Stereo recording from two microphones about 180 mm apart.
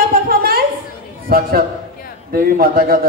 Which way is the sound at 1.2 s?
55° right (ahead or behind).